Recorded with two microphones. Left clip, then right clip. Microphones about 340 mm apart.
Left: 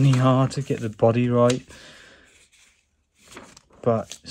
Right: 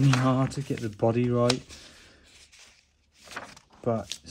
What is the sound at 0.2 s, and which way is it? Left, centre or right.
Speech, left.